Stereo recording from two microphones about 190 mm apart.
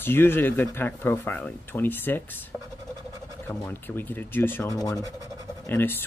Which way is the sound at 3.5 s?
10° left (ahead or behind).